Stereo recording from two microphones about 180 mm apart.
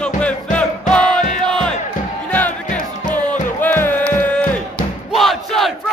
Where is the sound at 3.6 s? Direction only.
10° left (ahead or behind).